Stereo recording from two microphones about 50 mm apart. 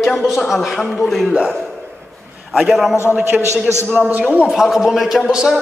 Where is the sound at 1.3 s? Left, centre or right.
Right.